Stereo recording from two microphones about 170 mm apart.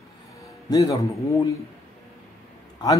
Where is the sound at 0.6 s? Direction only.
20° left (ahead or behind).